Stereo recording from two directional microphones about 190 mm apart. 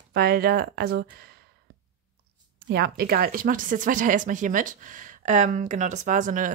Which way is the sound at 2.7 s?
60° right (ahead or behind).